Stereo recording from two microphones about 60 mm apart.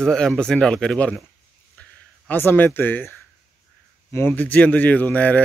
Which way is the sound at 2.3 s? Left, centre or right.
Left.